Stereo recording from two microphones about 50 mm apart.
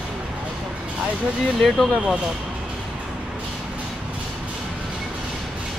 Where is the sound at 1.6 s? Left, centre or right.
Centre.